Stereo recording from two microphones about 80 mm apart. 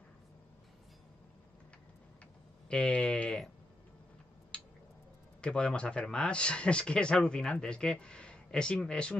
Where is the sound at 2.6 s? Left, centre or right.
Centre.